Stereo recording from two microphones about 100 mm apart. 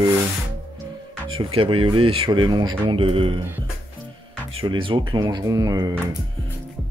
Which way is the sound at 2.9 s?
65° right (ahead or behind).